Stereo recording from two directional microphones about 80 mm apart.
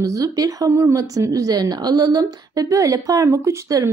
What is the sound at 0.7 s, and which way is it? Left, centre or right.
A woman's voice, right.